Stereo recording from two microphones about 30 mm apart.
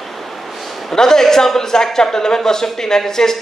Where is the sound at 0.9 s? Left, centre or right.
Centre.